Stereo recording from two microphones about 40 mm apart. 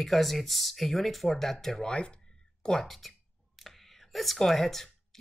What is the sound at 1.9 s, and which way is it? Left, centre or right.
Speech, left.